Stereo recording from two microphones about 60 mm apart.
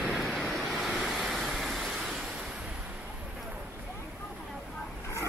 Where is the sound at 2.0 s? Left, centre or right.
Centre.